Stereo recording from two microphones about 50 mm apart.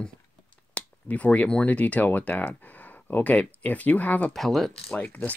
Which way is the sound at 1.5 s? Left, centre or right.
Left.